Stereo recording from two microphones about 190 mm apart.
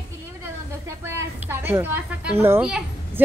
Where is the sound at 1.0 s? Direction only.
10° right (ahead or behind).